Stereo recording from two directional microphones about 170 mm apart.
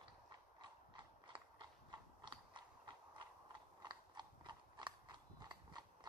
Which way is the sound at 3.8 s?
25° right (ahead or behind).